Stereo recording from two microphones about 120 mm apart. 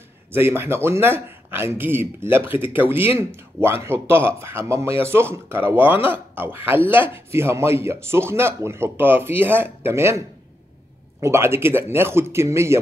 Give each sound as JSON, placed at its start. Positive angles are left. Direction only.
{"t": 0.3, "sound": "speech", "side_deg": -20}